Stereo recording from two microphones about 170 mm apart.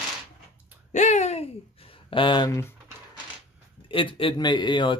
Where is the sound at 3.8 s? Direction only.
30° left (ahead or behind).